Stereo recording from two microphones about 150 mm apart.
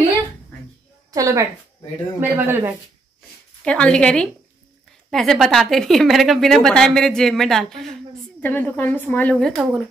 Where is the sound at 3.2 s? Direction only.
5° left (ahead or behind).